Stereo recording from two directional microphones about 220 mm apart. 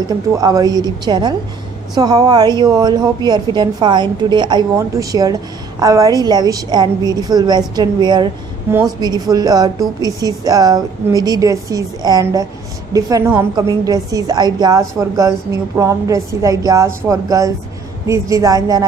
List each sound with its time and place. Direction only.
0.4 s a woman's voice: 15° right (ahead or behind)